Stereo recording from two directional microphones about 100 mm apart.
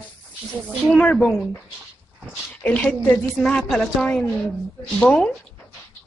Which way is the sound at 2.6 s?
15° left (ahead or behind).